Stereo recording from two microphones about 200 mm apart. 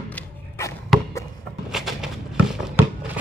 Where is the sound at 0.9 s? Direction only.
Centre (ahead or behind).